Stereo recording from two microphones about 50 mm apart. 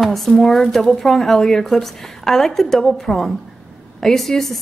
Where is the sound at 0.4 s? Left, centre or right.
Centre.